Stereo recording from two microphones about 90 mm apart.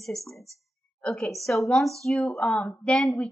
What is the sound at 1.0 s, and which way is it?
Speech, 15° left (ahead or behind).